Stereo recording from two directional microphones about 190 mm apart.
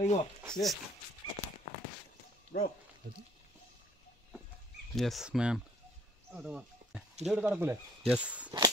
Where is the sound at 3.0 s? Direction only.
55° right (ahead or behind).